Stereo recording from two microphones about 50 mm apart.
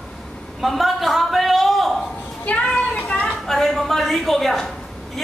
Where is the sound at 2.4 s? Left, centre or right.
Left.